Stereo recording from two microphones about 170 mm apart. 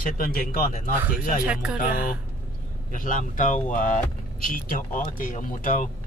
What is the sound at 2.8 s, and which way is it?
Speech, 50° left (ahead or behind).